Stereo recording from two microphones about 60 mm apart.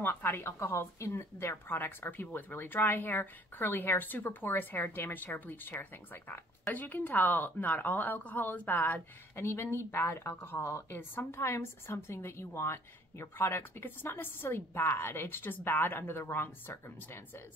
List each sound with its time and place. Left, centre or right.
0.0 s a woman's voice: left
9.4 s a woman's voice: left